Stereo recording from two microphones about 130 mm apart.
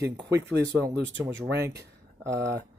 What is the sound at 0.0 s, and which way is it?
Speech, 20° right (ahead or behind).